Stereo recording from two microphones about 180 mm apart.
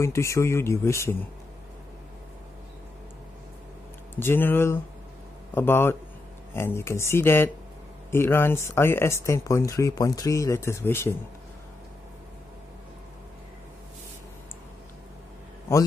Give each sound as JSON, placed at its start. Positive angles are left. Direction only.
{"t": 0.0, "sound": "speech", "side_deg": 15}
{"t": 4.1, "sound": "speech", "side_deg": 10}